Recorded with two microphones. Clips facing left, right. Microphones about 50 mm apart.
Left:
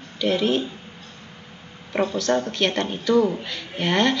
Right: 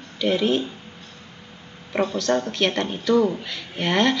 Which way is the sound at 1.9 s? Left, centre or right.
Centre.